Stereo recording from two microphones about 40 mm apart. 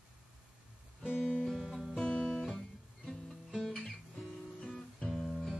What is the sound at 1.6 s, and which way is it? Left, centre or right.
Music, centre.